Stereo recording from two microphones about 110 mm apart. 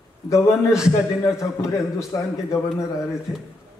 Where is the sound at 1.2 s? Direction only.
25° left (ahead or behind).